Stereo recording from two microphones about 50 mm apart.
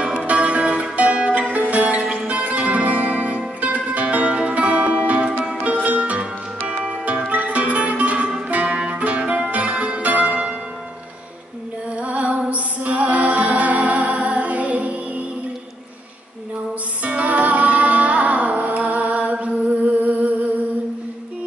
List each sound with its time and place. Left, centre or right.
0.2 s music: right
8.5 s zither: right
12.0 s music: right
17.0 s music: right